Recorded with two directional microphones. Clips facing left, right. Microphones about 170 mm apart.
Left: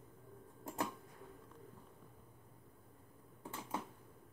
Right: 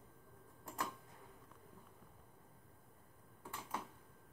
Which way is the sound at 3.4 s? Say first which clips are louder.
Left 3 dB; 20° left (ahead or behind).